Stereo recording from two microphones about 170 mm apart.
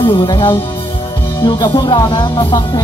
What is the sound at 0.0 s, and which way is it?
Music, 30° left (ahead or behind).